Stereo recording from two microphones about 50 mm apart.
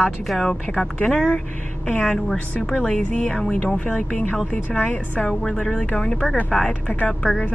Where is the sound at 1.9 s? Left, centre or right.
Left.